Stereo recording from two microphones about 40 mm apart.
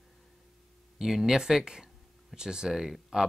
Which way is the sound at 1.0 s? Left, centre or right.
Centre.